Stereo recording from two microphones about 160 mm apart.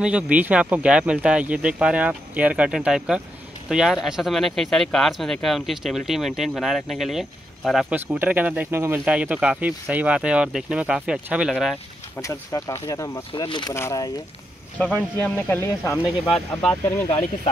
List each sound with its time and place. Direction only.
0.0 s speech: 10° right (ahead or behind)
11.7 s speech: 20° left (ahead or behind)
13.3 s speech: 30° left (ahead or behind)
15.3 s speech: 15° left (ahead or behind)
16.3 s speech: centre (ahead or behind)